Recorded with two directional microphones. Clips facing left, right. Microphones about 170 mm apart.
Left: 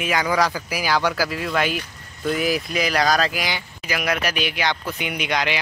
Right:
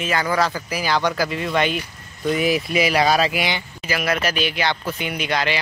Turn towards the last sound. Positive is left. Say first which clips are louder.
# right 1 dB
turn(degrees=15)  # may be behind; listen again after turning